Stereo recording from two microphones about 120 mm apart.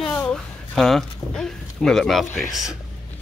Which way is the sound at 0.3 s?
5° left (ahead or behind).